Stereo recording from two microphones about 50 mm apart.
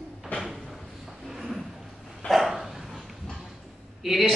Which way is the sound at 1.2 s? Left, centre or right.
Centre.